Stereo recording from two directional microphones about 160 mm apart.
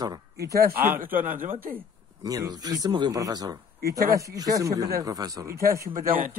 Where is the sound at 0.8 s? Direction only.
10° right (ahead or behind).